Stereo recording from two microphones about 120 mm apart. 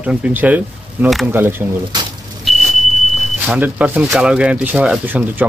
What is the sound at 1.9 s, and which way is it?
Speech, 35° right (ahead or behind).